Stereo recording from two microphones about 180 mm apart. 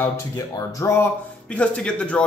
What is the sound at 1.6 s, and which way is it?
Speech, 5° left (ahead or behind).